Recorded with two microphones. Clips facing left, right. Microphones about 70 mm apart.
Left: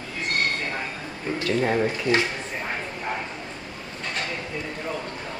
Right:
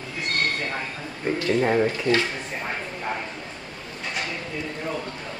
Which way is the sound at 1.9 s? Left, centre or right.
Left.